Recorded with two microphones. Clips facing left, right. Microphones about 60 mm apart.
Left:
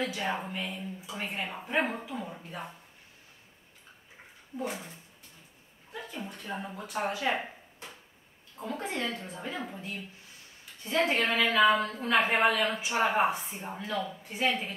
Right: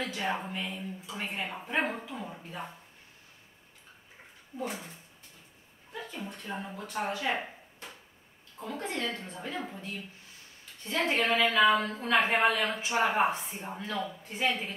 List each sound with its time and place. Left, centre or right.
0.0 s a woman's voice: centre
4.6 s a woman's voice: centre
6.2 s a woman's voice: centre
6.7 s speech: centre
7.2 s a sound: centre
8.5 s a woman's voice: centre
11.1 s a woman's voice: centre